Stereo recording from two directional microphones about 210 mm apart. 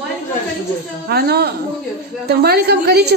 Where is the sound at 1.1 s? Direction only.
50° right (ahead or behind).